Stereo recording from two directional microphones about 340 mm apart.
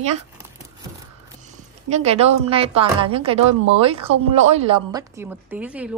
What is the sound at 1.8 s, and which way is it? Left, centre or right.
A woman's voice, centre.